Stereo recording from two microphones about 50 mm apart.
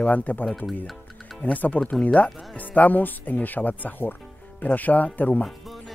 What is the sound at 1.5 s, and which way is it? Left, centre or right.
Speech, left.